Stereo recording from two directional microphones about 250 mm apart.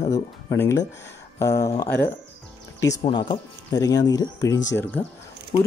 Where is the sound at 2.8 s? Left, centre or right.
Centre.